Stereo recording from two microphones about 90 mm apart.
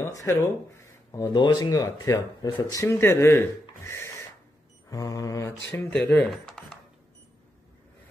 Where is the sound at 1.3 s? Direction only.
55° left (ahead or behind); by 2.9 s 40° left (ahead or behind).